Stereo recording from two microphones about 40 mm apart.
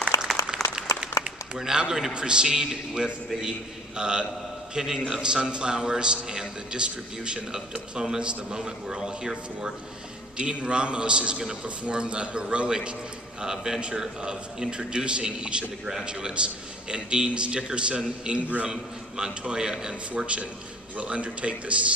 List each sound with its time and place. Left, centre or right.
0.5 s applause: right
1.6 s a man's voice: centre
20.2 s a man's voice: right